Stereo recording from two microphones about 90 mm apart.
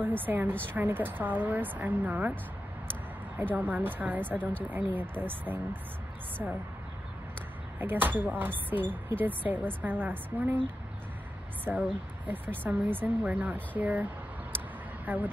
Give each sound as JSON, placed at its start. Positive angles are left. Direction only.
{"t": 0.0, "sound": "speech", "side_deg": -20}
{"t": 3.5, "sound": "speech", "side_deg": -20}
{"t": 7.8, "sound": "speech", "side_deg": -20}
{"t": 11.7, "sound": "speech", "side_deg": -20}
{"t": 15.1, "sound": "speech", "side_deg": -20}